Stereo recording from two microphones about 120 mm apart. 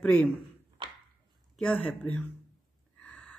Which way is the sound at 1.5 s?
10° left (ahead or behind).